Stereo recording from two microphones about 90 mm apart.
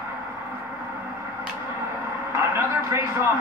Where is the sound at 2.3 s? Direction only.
30° right (ahead or behind).